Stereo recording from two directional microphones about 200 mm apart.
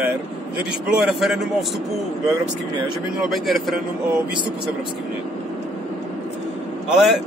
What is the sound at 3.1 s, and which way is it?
Speech, centre (ahead or behind).